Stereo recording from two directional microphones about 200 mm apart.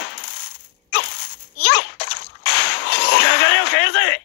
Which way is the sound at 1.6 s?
60° left (ahead or behind).